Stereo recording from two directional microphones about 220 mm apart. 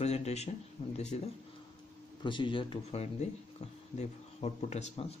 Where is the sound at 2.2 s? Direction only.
20° left (ahead or behind).